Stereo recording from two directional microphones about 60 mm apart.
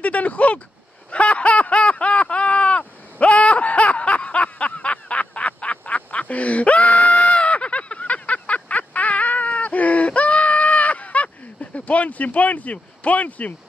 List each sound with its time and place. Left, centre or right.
0.0 s speech: left
1.1 s a sound: left
11.7 s speech: left